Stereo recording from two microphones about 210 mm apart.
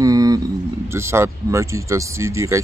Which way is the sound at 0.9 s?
10° right (ahead or behind).